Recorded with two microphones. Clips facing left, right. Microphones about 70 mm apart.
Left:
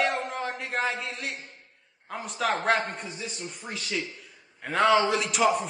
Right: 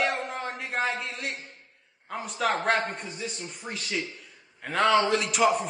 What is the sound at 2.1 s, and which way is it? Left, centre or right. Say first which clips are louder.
A man's voice: right 1 dB; centre.